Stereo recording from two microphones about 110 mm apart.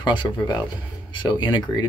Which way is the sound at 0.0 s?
45° left (ahead or behind).